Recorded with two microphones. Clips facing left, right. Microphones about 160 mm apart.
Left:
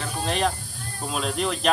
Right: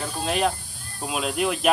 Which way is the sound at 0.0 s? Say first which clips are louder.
Right 1 dB; 5° right (ahead or behind).